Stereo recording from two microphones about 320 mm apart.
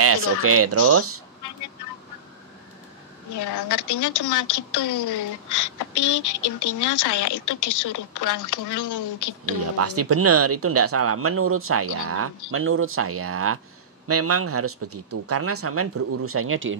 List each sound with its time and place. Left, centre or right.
0.4 s speech: right
3.3 s speech: left
9.8 s speech: right